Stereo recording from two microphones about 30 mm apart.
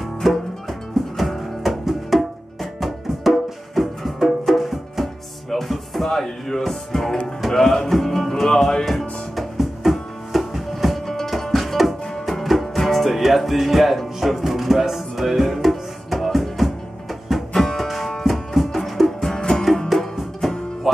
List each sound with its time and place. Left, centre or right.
0.0 s music: centre
6.0 s music: centre
9.3 s music: centre
11.1 s music: centre
17.5 s music: centre
17.7 s music: centre